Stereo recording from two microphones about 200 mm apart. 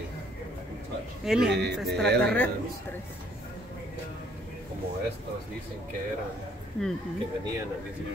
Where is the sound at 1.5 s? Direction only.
60° right (ahead or behind).